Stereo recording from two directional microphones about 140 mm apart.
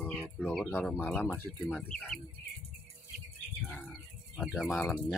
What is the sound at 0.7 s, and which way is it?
Speech, 10° left (ahead or behind).